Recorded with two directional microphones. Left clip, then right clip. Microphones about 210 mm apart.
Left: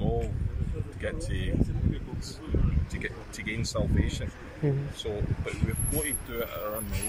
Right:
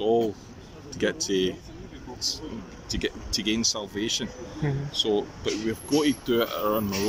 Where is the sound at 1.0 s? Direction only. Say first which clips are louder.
Right 11 dB; 55° right (ahead or behind).